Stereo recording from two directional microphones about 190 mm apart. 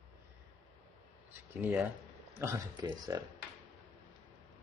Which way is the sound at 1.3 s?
10° right (ahead or behind).